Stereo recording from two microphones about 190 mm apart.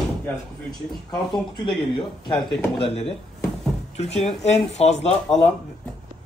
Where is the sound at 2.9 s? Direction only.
30° left (ahead or behind).